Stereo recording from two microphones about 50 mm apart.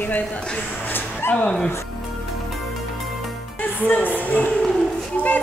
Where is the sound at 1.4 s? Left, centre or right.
Centre.